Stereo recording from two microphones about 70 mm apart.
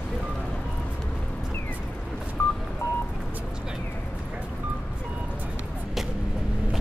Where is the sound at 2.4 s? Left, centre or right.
Left.